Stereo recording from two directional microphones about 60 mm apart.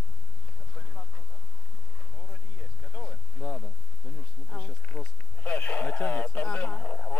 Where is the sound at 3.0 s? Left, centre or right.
Centre.